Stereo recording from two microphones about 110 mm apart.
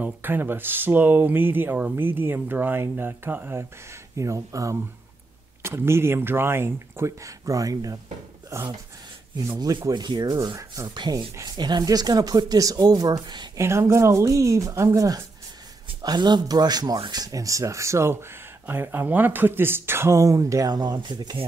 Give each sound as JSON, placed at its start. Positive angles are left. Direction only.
{"t": 0.0, "sound": "speech", "side_deg": -20}
{"t": 4.2, "sound": "speech", "side_deg": -30}
{"t": 9.5, "sound": "speech", "side_deg": -40}
{"t": 11.0, "sound": "speech", "side_deg": -40}
{"t": 13.6, "sound": "speech", "side_deg": -25}